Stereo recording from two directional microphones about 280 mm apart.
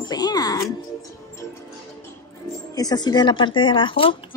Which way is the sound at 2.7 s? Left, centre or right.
Centre.